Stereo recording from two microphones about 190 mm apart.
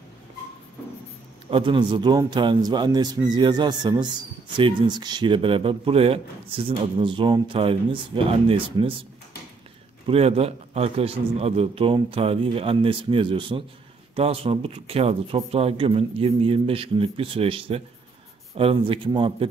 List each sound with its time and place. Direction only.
1.5 s a man's voice: 25° right (ahead or behind)
10.0 s a man's voice: 30° right (ahead or behind)